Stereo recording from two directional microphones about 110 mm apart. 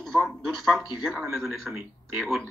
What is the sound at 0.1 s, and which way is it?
Speech, centre (ahead or behind).